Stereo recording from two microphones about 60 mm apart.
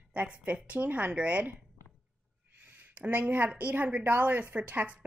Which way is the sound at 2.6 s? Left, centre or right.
Right.